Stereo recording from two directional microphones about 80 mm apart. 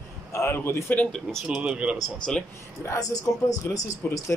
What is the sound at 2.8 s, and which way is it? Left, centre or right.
Speech, left.